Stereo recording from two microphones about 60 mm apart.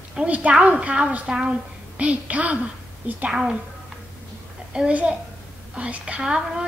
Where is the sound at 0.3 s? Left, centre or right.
Right.